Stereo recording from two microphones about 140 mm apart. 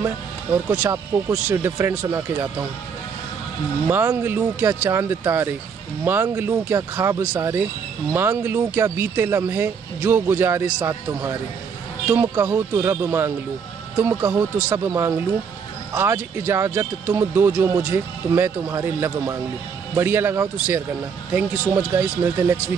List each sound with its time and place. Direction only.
0.0 s speech: 15° right (ahead or behind)
3.8 s speech: 15° right (ahead or behind)